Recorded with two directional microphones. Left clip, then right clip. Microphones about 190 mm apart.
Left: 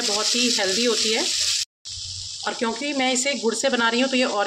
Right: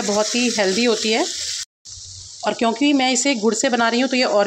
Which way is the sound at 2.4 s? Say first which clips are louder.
Right 7 dB; 35° right (ahead or behind).